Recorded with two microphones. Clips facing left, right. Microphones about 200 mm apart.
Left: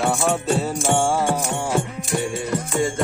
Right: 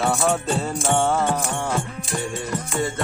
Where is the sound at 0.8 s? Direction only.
15° left (ahead or behind).